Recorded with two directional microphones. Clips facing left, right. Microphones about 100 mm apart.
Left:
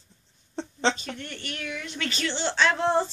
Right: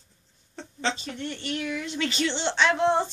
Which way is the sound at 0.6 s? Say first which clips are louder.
Left 4 dB; 30° left (ahead or behind).